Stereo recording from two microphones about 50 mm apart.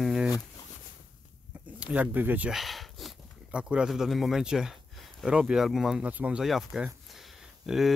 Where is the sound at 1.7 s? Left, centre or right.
Right.